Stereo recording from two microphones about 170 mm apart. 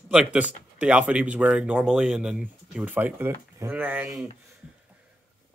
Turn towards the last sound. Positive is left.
turn(degrees=-10)  # may be behind; listen again after turning